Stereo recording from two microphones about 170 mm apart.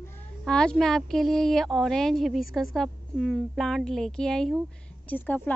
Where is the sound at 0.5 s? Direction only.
5° left (ahead or behind).